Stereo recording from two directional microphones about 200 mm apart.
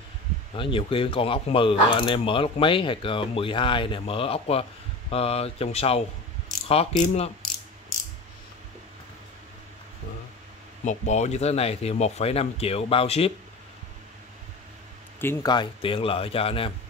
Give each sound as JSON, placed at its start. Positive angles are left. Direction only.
{"t": 0.6, "sound": "speech", "side_deg": 25}
{"t": 10.9, "sound": "speech", "side_deg": 35}
{"t": 15.1, "sound": "speech", "side_deg": 10}
{"t": 15.5, "sound": "speech", "side_deg": 25}